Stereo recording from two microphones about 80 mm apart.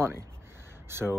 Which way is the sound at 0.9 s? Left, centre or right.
Right.